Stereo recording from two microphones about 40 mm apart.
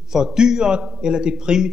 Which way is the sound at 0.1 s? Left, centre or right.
Centre.